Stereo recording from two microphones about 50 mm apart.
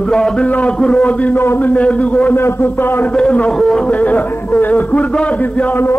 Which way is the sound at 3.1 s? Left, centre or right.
Left.